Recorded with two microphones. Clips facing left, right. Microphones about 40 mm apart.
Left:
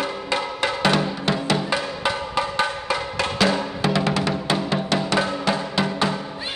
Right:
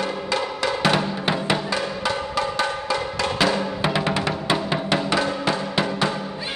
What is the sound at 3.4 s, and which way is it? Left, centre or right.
Music, centre.